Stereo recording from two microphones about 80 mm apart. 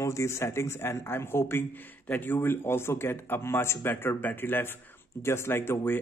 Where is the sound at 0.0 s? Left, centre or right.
Left.